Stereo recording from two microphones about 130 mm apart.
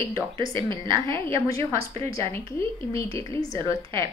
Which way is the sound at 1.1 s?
20° left (ahead or behind).